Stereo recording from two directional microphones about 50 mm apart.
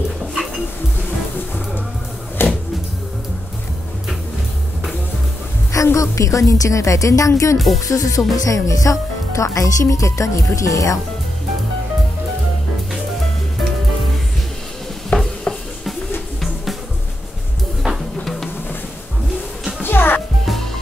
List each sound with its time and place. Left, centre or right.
2.4 s a sound: left
5.9 s a woman's voice: left
7.5 s music: centre
8.5 s a woman's voice: left
15.1 s stir: left
17.8 s music: centre
18.2 s music: centre
19.8 s music: left